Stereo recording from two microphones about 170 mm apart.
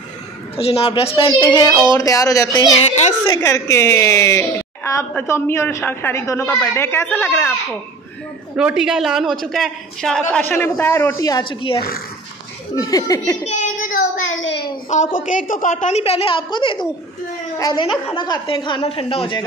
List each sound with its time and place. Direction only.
0.6 s a woman's voice: 35° left (ahead or behind); by 2.7 s 20° left (ahead or behind)
2.8 s a woman's voice: 40° left (ahead or behind)
3.3 s a woman's voice: 20° left (ahead or behind)
8.5 s a man's voice: 5° right (ahead or behind); by 13.4 s 20° left (ahead or behind)
13.6 s child singing: 50° left (ahead or behind)
14.4 s a sound: 90° left
15.1 s a woman's voice: 50° left (ahead or behind); by 19.4 s 30° left (ahead or behind)